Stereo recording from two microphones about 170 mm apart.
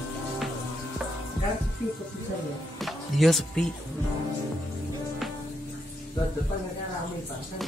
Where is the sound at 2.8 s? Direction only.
Centre (ahead or behind).